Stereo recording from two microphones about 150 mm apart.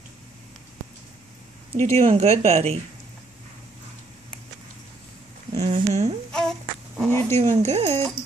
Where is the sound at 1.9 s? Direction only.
45° right (ahead or behind).